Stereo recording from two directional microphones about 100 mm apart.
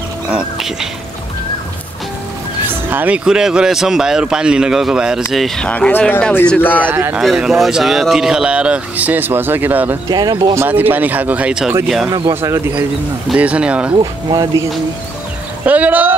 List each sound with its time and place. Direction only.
0.3 s speech: 5° right (ahead or behind)
2.6 s a sound: 20° right (ahead or behind)
3.3 s speech: 5° right (ahead or behind)
5.7 s speech: 15° left (ahead or behind)
6.8 s speech: 20° right (ahead or behind)
7.2 s speech: 5° right (ahead or behind)
10.0 s speech: 45° right (ahead or behind)
10.7 s speech: 15° right (ahead or behind)
12.4 s speech: 30° right (ahead or behind)
13.4 s speech: 10° right (ahead or behind)
14.3 s music: 40° right (ahead or behind)
15.6 s speech: 15° right (ahead or behind)